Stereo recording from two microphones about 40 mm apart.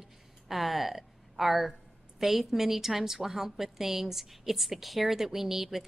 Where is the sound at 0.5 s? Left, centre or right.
Centre.